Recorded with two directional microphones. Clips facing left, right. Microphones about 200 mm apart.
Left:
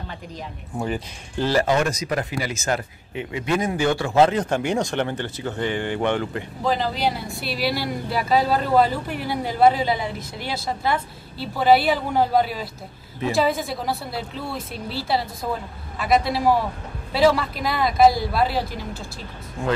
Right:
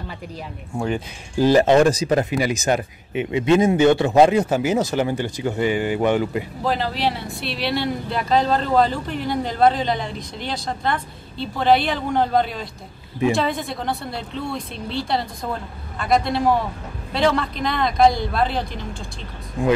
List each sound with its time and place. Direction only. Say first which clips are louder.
0.7 s speech: right 3 dB; 5° left (ahead or behind)
1.4 s speech: right 6 dB; 20° right (ahead or behind); by 18.9 s 5° left (ahead or behind)
19.6 s speech: right 5 dB; 15° right (ahead or behind)